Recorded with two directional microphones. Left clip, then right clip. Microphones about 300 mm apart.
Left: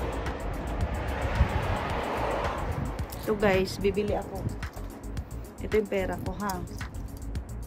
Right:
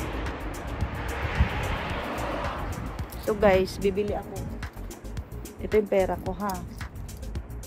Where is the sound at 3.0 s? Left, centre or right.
Centre.